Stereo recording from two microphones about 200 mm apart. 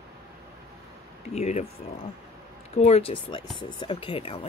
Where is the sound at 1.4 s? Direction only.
35° left (ahead or behind).